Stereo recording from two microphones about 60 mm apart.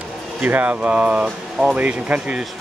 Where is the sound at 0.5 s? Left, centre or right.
Right.